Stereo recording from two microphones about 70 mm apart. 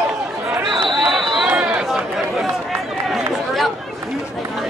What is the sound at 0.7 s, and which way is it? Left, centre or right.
Basketball bounce, right.